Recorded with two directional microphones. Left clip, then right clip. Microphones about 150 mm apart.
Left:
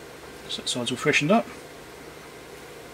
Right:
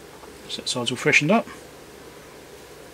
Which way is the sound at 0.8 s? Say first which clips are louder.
Right 3 dB; 20° right (ahead or behind).